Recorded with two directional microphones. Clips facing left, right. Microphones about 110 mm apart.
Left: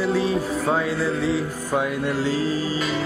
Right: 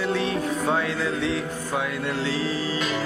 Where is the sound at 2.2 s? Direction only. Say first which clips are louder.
Left 3 dB; 45° left (ahead or behind).